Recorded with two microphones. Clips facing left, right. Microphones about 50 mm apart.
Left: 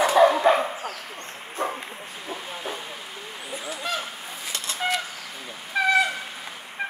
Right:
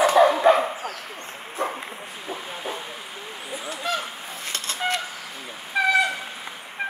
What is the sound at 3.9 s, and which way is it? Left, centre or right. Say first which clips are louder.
Goose: right 3 dB; centre.